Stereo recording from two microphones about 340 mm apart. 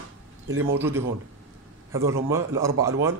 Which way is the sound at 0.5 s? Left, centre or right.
Right.